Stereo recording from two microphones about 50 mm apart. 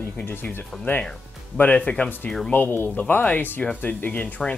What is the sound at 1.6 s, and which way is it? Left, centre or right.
Speech, left.